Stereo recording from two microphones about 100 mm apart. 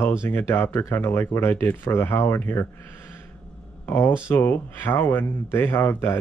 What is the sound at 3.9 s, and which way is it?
Speech, 20° left (ahead or behind).